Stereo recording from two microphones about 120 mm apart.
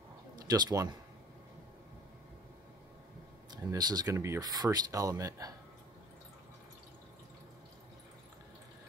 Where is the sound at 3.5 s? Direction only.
35° right (ahead or behind).